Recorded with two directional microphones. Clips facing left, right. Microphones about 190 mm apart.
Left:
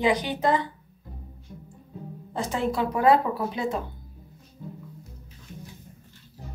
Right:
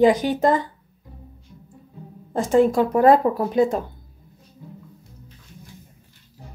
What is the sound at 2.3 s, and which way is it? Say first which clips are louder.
A woman's voice: right 10 dB; 45° right (ahead or behind).